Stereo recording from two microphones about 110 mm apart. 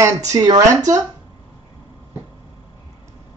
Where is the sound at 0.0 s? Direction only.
30° right (ahead or behind).